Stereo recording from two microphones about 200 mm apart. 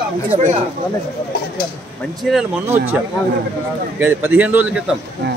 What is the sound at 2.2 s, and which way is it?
Speech, centre (ahead or behind).